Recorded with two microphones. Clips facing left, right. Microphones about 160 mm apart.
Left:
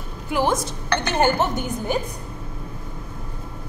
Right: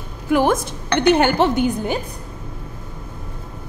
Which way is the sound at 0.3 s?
55° right (ahead or behind).